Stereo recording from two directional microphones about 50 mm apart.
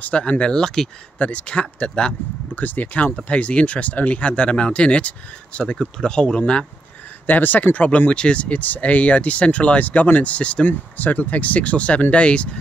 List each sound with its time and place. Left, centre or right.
0.0 s speech: left
1.1 s speech: left
2.5 s speech: left
7.2 s speech: left
10.7 s speech: left